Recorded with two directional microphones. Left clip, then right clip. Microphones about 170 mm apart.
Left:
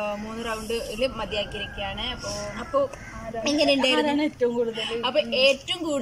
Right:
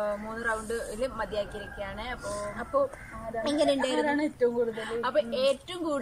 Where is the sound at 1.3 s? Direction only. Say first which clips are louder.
Left 4 dB; 45° right (ahead or behind).